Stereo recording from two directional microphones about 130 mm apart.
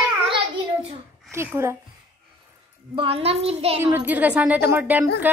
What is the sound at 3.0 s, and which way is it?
Speech, 50° right (ahead or behind).